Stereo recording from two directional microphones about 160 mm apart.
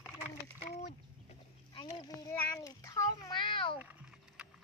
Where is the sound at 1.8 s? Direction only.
25° left (ahead or behind).